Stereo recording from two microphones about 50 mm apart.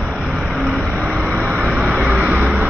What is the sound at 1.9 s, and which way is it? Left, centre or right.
Vehicle, right.